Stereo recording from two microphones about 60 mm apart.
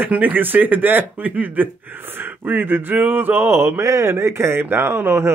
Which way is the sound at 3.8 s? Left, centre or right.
Right.